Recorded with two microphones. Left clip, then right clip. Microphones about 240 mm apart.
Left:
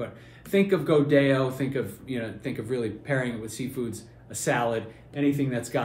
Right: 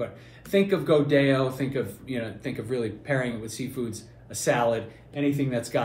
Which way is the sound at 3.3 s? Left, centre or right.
Right.